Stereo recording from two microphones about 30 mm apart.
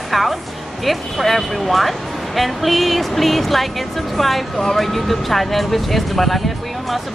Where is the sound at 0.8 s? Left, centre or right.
Centre.